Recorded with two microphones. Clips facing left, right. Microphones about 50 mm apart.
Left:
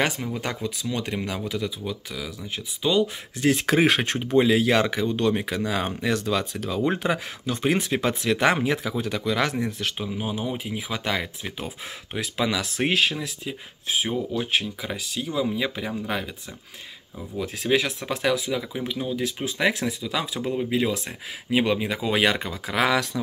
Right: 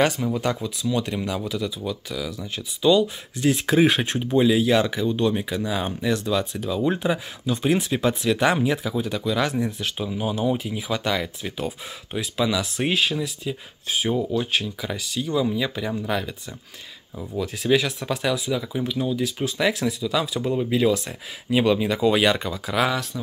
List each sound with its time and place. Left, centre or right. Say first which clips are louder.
0.0 s speech: right 4 dB; left
1.9 s speech: right 3 dB; left
3.3 s speech: right 1 dB; left
10.0 s speech: right 8 dB; centre
10.6 s speech: right 3 dB; left
12.2 s speech: right 2 dB; left
14.3 s speech: right 1 dB; left
17.4 s speech: right 2 dB; left
20.3 s speech: right 2 dB; centre; by 22.8 s left